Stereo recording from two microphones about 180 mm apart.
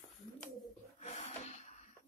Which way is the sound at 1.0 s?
40° left (ahead or behind).